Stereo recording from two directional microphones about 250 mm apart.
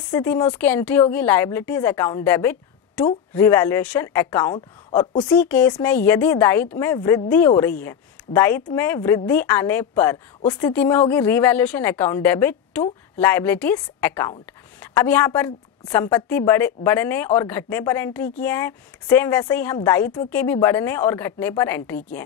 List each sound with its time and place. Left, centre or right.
0.1 s speech: centre